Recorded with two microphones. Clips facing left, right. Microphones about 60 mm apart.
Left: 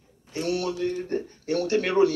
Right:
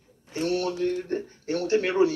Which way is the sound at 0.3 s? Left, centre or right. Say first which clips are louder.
Right 1 dB; right.